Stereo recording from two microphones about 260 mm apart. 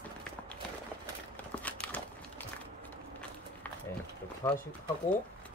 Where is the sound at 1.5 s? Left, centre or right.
Centre.